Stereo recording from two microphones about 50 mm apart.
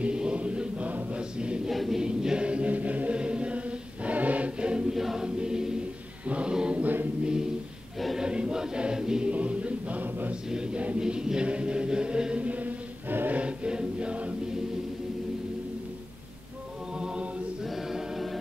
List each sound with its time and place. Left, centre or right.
0.0 s chant: centre
1.7 s choir: centre
2.0 s choir: centre
4.6 s choir: centre
4.9 s choir: centre
6.2 s mantra: right
6.8 s a capella: right
8.2 s choir: centre
9.3 s music: right
10.5 s music: centre
11.0 s chant: centre; by 13.4 s right
13.4 s choir: centre
17.0 s a capella: centre
17.6 s choir: centre